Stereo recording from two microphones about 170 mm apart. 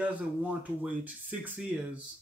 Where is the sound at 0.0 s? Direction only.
10° right (ahead or behind).